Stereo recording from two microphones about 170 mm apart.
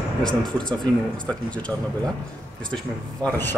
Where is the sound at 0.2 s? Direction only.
5° left (ahead or behind).